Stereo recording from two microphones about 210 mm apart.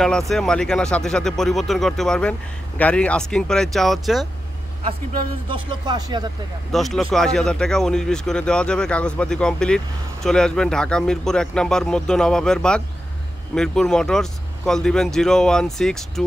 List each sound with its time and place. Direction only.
0.3 s speech: 5° left (ahead or behind)
5.5 s speech: 20° right (ahead or behind)
6.7 s speech: centre (ahead or behind)